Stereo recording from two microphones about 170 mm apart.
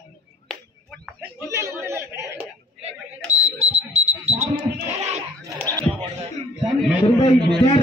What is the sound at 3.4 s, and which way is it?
Smoke detector, 40° right (ahead or behind).